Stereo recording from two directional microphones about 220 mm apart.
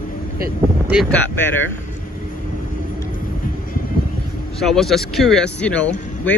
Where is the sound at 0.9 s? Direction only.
5° left (ahead or behind).